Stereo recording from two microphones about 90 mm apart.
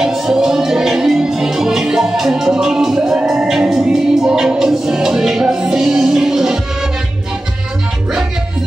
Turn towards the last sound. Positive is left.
turn(degrees=-5)  # may be behind; listen again after turning